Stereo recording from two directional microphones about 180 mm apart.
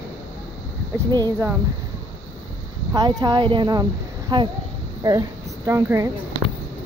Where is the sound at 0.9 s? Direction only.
20° right (ahead or behind).